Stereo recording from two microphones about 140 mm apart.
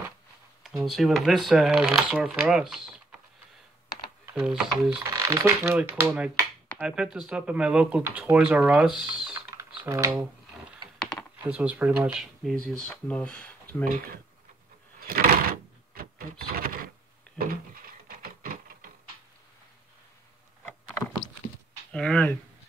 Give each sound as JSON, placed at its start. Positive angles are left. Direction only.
{"t": 0.7, "sound": "speech", "side_deg": 0}
{"t": 4.4, "sound": "speech", "side_deg": 0}
{"t": 4.9, "sound": "speech", "side_deg": -30}
{"t": 5.6, "sound": "speech", "side_deg": -15}
{"t": 9.8, "sound": "speech", "side_deg": -25}
{"t": 11.0, "sound": "computer keyboard", "side_deg": 5}
{"t": 11.4, "sound": "speech", "side_deg": -10}
{"t": 12.7, "sound": "speech", "side_deg": 10}
{"t": 13.8, "sound": "speech", "side_deg": -90}
{"t": 15.0, "sound": "door", "side_deg": -90}
{"t": 15.9, "sound": "a sound", "side_deg": -90}
{"t": 17.4, "sound": "printer", "side_deg": -90}
{"t": 21.9, "sound": "speech", "side_deg": 5}